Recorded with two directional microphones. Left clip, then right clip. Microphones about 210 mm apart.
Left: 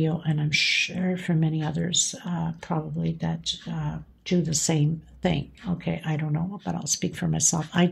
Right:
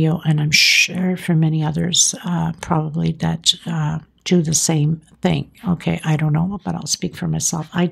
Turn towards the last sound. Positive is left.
turn(degrees=-15)  # may be behind; listen again after turning